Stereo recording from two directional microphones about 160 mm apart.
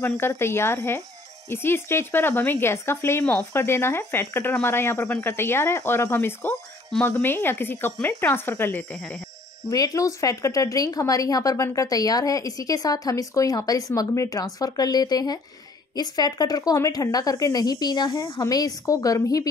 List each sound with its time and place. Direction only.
0.2 s speech: 15° left (ahead or behind)
9.7 s a woman's voice: 20° left (ahead or behind)